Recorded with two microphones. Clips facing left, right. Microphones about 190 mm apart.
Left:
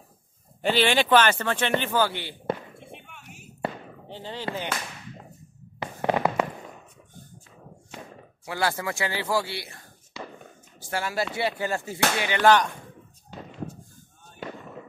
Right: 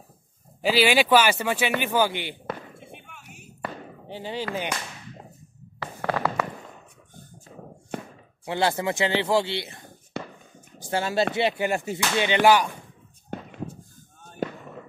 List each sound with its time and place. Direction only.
0.6 s speech: 5° right (ahead or behind)
2.8 s a sound: centre (ahead or behind)
4.1 s speech: 15° right (ahead or behind)
4.6 s a sound: 15° right (ahead or behind)
5.8 s fireworks: 20° left (ahead or behind)
7.9 s chop: 55° right (ahead or behind)
8.5 s speech: 25° right (ahead or behind)
10.1 s fireworks: 55° right (ahead or behind)
10.8 s speech: 25° right (ahead or behind)
12.4 s speech: 10° right (ahead or behind)
13.3 s fireworks: 55° right (ahead or behind)
14.4 s fireworks: 45° right (ahead or behind)